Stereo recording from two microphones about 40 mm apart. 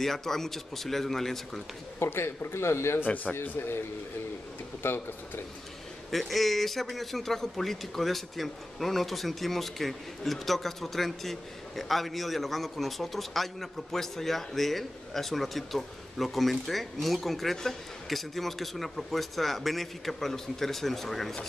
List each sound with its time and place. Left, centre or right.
0.0 s speech: centre
2.0 s a man's voice: left
3.4 s speech: left
4.8 s speech: left
6.0 s a man's voice: centre